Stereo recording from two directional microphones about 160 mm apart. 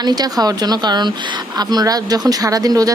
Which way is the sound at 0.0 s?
25° right (ahead or behind).